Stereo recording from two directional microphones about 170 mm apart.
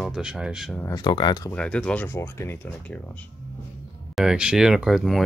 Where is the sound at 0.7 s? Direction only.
20° left (ahead or behind).